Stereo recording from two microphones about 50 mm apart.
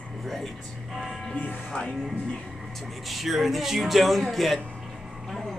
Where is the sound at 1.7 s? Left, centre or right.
Left.